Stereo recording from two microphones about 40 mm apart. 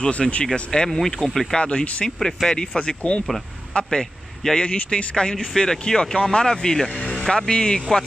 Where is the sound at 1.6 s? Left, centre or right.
Left.